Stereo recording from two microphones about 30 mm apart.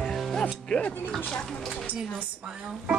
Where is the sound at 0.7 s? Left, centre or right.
Left.